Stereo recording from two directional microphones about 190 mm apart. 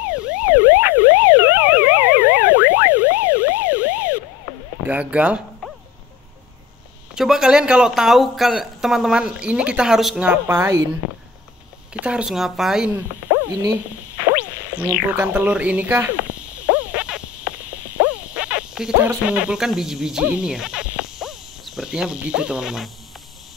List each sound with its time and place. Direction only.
0.3 s emergency vehicle: 10° right (ahead or behind)
4.8 s a sound: 5° right (ahead or behind)
7.2 s speech: 5° right (ahead or behind)
11.9 s speech: 5° right (ahead or behind)
12.9 s speech: 15° right (ahead or behind)
14.9 s speech: 10° right (ahead or behind)
16.9 s frog: 5° right (ahead or behind)
18.0 s a sound: 10° right (ahead or behind)
18.3 s speech: 5° right (ahead or behind)